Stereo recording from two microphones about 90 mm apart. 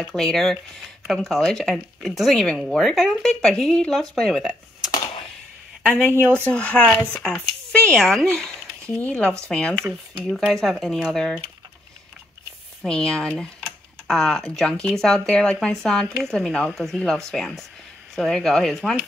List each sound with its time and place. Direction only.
0.0 s speech: 5° left (ahead or behind)
4.4 s speech: 5° right (ahead or behind)
6.1 s speech: 25° right (ahead or behind)
6.4 s speech: 10° left (ahead or behind)
12.8 s speech: 10° left (ahead or behind)